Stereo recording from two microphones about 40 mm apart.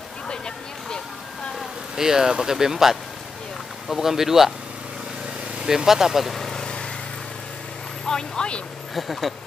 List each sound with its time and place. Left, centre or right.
2.0 s speech: centre
5.9 s speech: centre
6.3 s vehicle: centre
8.1 s speech: centre
8.9 s speech: centre